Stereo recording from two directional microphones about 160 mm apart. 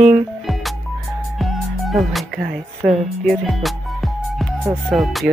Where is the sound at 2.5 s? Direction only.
Centre (ahead or behind).